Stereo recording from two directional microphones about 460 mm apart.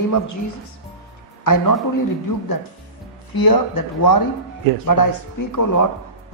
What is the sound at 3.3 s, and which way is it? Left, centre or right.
Speech, left.